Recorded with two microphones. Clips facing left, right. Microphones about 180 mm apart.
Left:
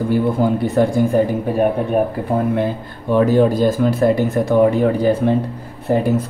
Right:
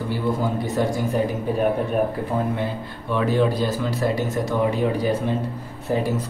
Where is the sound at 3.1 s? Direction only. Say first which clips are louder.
Left 7 dB; 45° left (ahead or behind).